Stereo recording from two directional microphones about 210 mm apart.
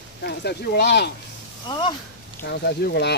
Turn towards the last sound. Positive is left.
turn(degrees=50)  # may be behind; listen again after turning